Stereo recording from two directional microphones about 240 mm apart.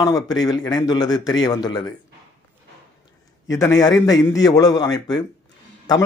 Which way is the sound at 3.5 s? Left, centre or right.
Centre.